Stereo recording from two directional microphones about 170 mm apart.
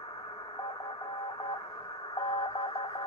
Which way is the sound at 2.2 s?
25° left (ahead or behind).